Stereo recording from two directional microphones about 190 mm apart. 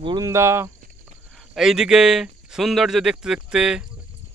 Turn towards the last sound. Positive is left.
turn(degrees=-5)  # may be behind; listen again after turning